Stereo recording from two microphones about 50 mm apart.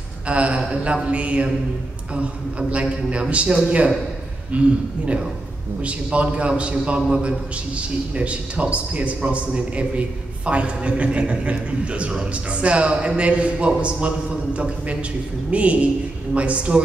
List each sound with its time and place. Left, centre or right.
0.3 s a man's voice: right
2.7 s a man's voice: right